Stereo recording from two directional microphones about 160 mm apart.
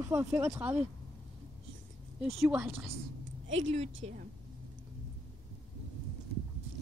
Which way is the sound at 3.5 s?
40° right (ahead or behind).